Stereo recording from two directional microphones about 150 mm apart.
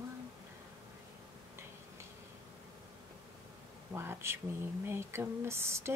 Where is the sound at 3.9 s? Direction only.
15° right (ahead or behind).